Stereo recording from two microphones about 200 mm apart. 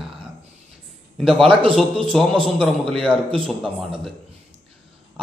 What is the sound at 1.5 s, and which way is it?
Speech, 25° right (ahead or behind).